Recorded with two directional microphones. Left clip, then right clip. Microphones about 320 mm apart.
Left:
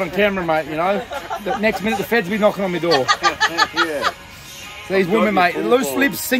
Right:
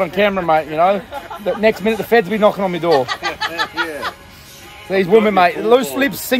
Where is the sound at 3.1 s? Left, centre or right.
Left.